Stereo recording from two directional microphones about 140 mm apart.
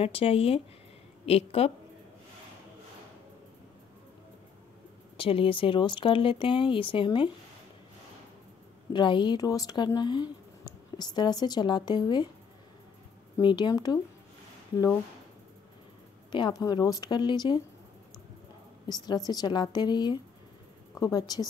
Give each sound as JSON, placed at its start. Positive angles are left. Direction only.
{"t": 0.0, "sound": "speech", "side_deg": 45}
{"t": 5.1, "sound": "speech", "side_deg": 40}
{"t": 8.9, "sound": "speech", "side_deg": 35}
{"t": 13.4, "sound": "speech", "side_deg": 35}
{"t": 16.3, "sound": "speech", "side_deg": 35}
{"t": 18.9, "sound": "a woman's voice", "side_deg": 30}